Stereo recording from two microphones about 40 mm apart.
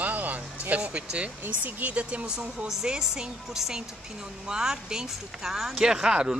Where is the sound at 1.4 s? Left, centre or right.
Right; by 5.5 s centre.